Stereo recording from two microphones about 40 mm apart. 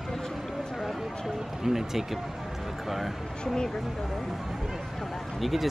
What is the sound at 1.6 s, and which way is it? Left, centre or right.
Speech, centre.